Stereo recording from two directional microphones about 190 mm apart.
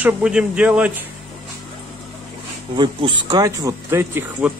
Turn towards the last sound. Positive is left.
turn(degrees=-10)  # may be behind; listen again after turning